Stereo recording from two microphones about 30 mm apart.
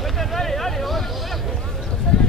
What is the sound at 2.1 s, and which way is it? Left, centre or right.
Clip-clop, left.